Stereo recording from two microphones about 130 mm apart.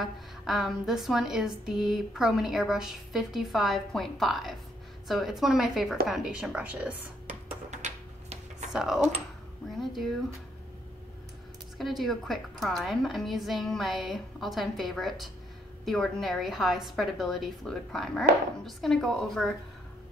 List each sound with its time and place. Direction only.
0.0 s a woman's voice: centre (ahead or behind)
7.7 s a sound: 65° right (ahead or behind)
8.7 s a woman's voice: 5° right (ahead or behind)
11.8 s a woman's voice: centre (ahead or behind)